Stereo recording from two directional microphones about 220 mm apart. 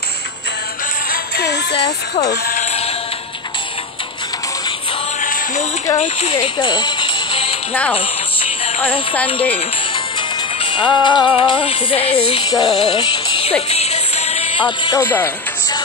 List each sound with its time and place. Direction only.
1.1 s music: 50° left (ahead or behind)
2.4 s sheep: 35° left (ahead or behind)
5.9 s speech: 30° left (ahead or behind)
6.3 s music: 20° left (ahead or behind)
10.6 s music: 25° left (ahead or behind)